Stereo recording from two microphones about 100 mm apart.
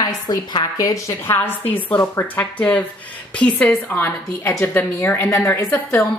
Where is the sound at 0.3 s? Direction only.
40° left (ahead or behind).